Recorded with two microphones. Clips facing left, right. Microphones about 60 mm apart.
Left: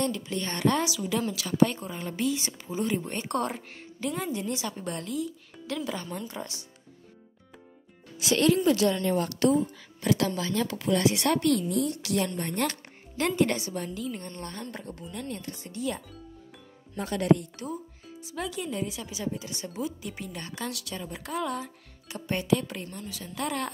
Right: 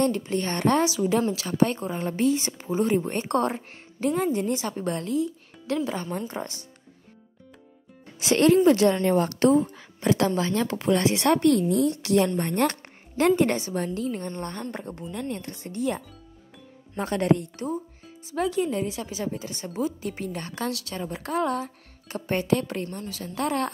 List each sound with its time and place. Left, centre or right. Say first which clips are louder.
0.0 s a woman's voice: right 6 dB; right
8.2 s a woman's voice: right 5 dB; right